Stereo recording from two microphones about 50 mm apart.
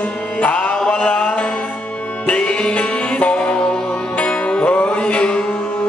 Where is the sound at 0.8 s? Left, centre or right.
Left.